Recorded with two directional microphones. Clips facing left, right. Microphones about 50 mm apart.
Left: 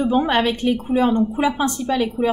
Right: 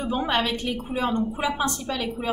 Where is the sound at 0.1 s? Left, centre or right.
Left.